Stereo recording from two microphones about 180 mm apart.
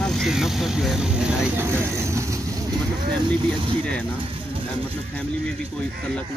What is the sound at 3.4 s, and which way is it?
Speech, 5° left (ahead or behind).